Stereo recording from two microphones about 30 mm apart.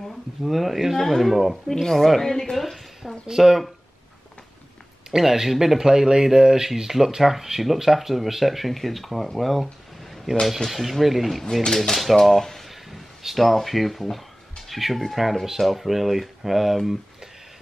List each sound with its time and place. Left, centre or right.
0.4 s speech: centre
1.0 s speech: centre
1.7 s speech: centre
3.3 s speech: centre
5.1 s speech: centre
10.7 s speech: centre
11.6 s speech: centre
11.9 s speech: centre
12.2 s speech: centre